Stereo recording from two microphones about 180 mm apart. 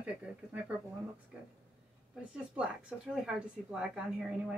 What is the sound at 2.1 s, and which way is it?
A woman's voice, 5° right (ahead or behind).